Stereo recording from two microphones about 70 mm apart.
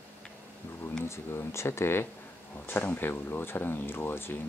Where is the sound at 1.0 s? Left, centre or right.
Left.